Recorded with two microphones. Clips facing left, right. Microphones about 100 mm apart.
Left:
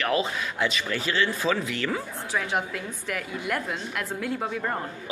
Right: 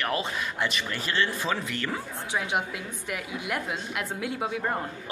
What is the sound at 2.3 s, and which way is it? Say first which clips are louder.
A woman's voice: left 1 dB; 15° right (ahead or behind).